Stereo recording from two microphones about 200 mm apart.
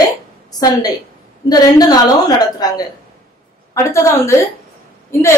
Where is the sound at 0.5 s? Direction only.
20° left (ahead or behind).